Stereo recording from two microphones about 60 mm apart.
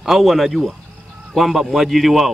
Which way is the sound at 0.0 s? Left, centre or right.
Centre.